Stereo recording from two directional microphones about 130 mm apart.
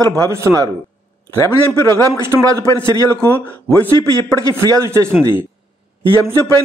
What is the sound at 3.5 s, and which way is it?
Speech, 10° left (ahead or behind).